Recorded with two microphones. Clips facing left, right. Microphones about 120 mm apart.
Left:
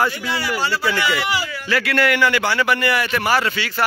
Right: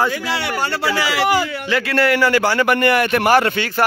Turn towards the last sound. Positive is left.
turn(degrees=-50)  # may be behind; listen again after turning